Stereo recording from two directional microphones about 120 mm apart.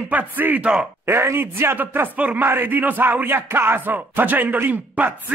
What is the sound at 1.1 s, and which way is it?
A man's voice, 20° right (ahead or behind).